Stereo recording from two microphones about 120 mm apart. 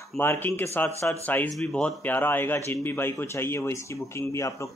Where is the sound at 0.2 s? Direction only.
20° left (ahead or behind).